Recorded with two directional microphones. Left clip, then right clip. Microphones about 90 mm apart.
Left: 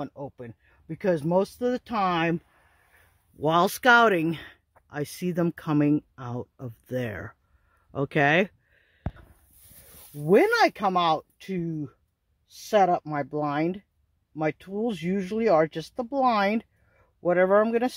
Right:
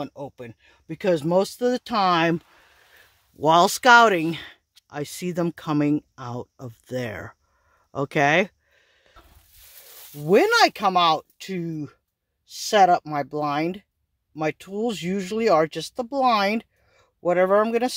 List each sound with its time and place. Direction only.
0.0 s speech: 25° right (ahead or behind); by 2.1 s 80° right
3.3 s speech: 45° right (ahead or behind); by 4.6 s 25° right (ahead or behind)
4.8 s speech: 15° right (ahead or behind)
7.9 s a sound: 20° right (ahead or behind)
10.1 s speech: 25° right (ahead or behind)